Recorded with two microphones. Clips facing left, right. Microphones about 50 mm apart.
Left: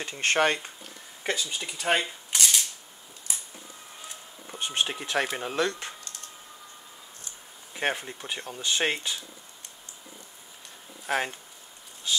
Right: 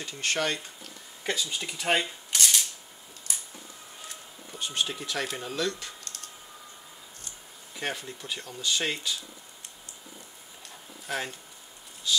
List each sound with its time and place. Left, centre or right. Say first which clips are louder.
0.0 s speech: left 5 dB; left
1.5 s speech: even; centre
1.8 s a sound: left 1 dB; centre
3.3 s a sound: left 1 dB; centre
4.5 s speech: left 2 dB; left
7.7 s speech: left 5 dB; left
11.1 s speech: left 5 dB; left